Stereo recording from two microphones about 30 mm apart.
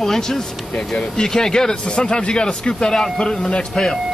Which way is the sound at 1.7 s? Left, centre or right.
Left.